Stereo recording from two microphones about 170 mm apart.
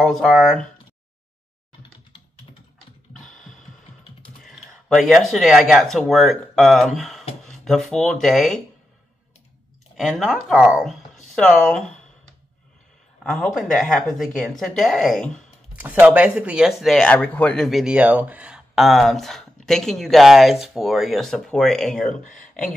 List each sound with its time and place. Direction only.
0.0 s speech: centre (ahead or behind)
3.1 s a sound: 5° left (ahead or behind)
4.4 s speech: centre (ahead or behind)
9.9 s speech: centre (ahead or behind)
13.2 s speech: centre (ahead or behind)
15.8 s speech: 10° right (ahead or behind)